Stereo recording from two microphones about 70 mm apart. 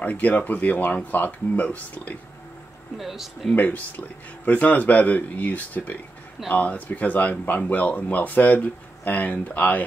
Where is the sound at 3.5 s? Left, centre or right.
Left.